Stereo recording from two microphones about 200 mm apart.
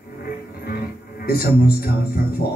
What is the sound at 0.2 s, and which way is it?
Speech, 50° left (ahead or behind).